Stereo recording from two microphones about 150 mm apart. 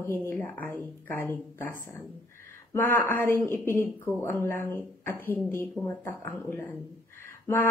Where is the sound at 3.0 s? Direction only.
15° left (ahead or behind).